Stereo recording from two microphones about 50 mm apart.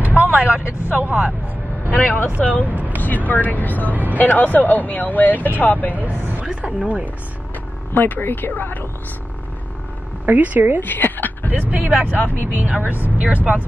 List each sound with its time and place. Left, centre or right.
0.2 s speech: right
1.9 s speech: left
2.6 s speech: right
3.3 s speech: left
3.9 s a woman's voice: right
4.2 s speech: left
5.9 s speech: right
6.4 s a sound: centre
7.9 s speech: left
10.2 s a woman's voice: right
10.8 s a sound: left
11.6 s a woman's voice: right